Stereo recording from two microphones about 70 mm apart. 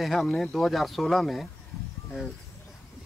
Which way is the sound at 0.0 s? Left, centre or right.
Centre.